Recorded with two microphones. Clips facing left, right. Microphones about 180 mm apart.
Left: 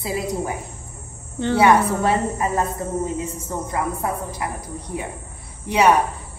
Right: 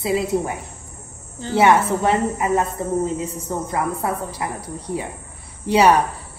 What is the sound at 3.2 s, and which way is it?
A woman's voice, 35° right (ahead or behind).